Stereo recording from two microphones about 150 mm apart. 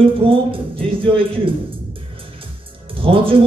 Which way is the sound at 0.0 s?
35° right (ahead or behind).